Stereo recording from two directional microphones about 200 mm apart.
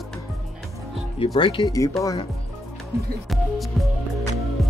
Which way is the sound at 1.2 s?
25° left (ahead or behind).